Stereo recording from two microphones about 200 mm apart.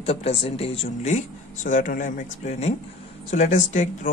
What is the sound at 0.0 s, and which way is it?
Speech, 30° left (ahead or behind).